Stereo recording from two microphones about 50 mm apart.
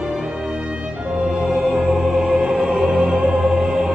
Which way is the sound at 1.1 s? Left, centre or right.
Centre.